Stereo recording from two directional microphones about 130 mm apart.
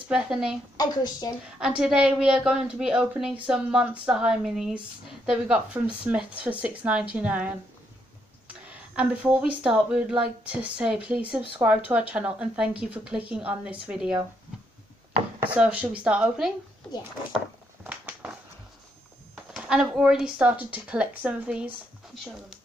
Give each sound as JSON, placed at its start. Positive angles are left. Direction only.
{"t": 0.1, "sound": "a woman's voice", "side_deg": -5}
{"t": 0.7, "sound": "a woman's voice", "side_deg": 30}
{"t": 1.8, "sound": "a woman's voice", "side_deg": -5}
{"t": 15.4, "sound": "speech", "side_deg": -10}
{"t": 17.8, "sound": "a sound", "side_deg": -10}
{"t": 19.7, "sound": "speech", "side_deg": -5}